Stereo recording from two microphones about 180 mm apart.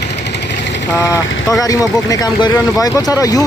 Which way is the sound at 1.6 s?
20° left (ahead or behind).